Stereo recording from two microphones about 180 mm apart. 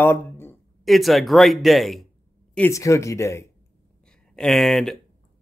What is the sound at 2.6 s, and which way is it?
Speech, 15° left (ahead or behind).